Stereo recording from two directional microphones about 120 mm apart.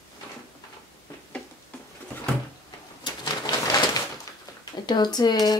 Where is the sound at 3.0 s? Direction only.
30° left (ahead or behind).